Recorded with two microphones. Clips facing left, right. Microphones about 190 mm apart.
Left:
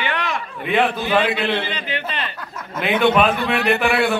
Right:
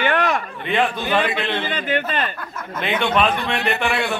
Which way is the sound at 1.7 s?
50° right (ahead or behind).